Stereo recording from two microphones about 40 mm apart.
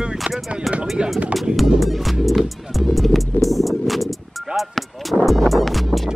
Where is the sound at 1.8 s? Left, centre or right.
Centre.